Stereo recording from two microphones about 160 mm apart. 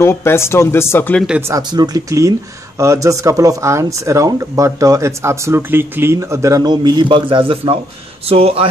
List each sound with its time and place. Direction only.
0.0 s speech: 15° left (ahead or behind)
1.5 s speech: 25° right (ahead or behind)